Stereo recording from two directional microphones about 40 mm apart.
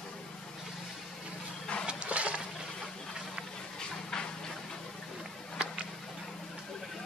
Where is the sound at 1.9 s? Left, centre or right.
Right.